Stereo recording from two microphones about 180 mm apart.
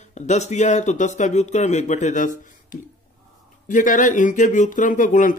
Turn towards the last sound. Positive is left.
turn(degrees=45)  # may be behind; listen again after turning